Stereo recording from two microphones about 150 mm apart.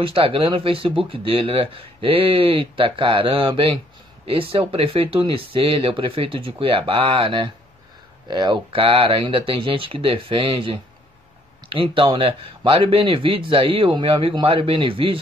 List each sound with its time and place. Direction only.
0.0 s speech: 35° right (ahead or behind)